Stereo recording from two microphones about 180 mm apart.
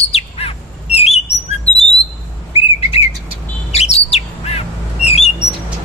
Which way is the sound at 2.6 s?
35° left (ahead or behind).